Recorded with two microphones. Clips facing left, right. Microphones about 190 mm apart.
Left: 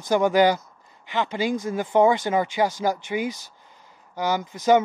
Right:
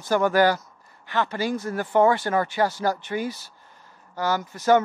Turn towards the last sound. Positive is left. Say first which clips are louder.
# left 1 dB
turn(degrees=15)  # may be behind; listen again after turning